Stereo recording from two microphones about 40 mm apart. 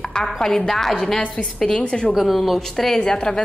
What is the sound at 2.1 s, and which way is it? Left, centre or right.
Speech, centre.